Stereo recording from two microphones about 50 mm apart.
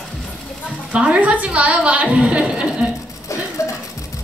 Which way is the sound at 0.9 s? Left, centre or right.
Right.